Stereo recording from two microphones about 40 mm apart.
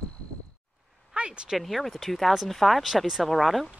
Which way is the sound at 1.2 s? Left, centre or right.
Right.